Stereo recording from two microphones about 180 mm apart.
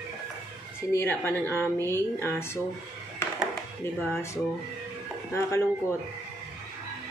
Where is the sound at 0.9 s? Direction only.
10° left (ahead or behind).